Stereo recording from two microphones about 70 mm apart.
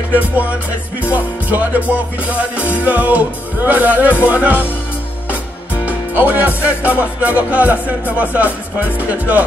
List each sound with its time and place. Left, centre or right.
0.2 s music: right
5.9 s music: right